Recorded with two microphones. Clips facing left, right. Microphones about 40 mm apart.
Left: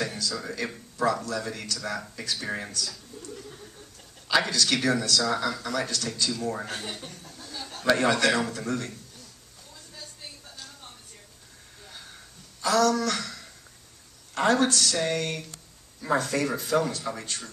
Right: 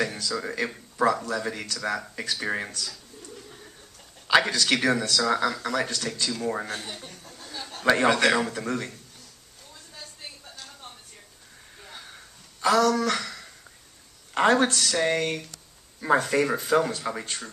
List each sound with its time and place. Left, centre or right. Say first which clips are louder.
0.0 s speech: right 3 dB; centre
2.9 s a sound: left 2 dB; centre
4.3 s speech: right 3 dB; right
6.8 s speech: left 1 dB; centre
7.1 s speech: even; centre
7.4 s a sound: right 4 dB; centre
7.9 s speech: right 2 dB; right
12.6 s speech: right 2 dB; right